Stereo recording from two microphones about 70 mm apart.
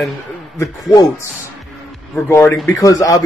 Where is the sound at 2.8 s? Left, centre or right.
Left.